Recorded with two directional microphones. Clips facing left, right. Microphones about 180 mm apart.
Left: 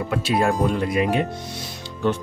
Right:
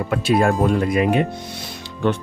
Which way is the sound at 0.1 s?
50° right (ahead or behind).